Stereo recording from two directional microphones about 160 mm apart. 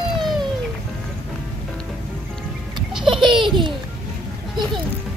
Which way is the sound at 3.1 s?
30° right (ahead or behind).